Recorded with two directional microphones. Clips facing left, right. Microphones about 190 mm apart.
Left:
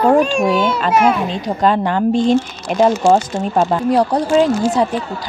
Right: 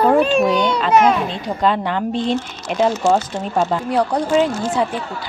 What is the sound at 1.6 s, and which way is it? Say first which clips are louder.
Speech: left 4 dB; 45° left (ahead or behind).